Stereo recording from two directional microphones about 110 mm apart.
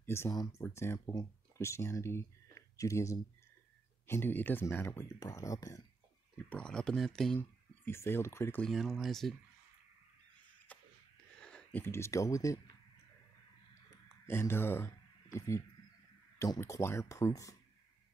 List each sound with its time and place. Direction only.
0.0 s speech: 25° left (ahead or behind)
6.3 s speech: 10° left (ahead or behind)
7.3 s speech: 20° left (ahead or behind)
8.5 s speech: 5° left (ahead or behind)
10.7 s a sound: 15° left (ahead or behind)
11.8 s speech: 25° left (ahead or behind)
14.2 s speech: 20° left (ahead or behind)